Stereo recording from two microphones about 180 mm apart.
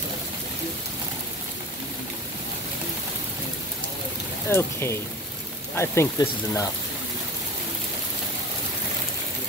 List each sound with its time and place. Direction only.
4.5 s speech: 15° left (ahead or behind)